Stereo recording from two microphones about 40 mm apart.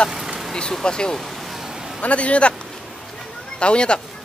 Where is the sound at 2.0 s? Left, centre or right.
Left.